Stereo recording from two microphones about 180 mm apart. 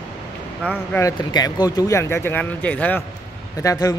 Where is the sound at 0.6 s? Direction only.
10° left (ahead or behind).